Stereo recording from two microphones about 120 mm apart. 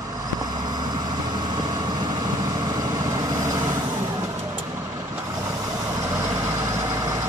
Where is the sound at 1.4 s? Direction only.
35° right (ahead or behind).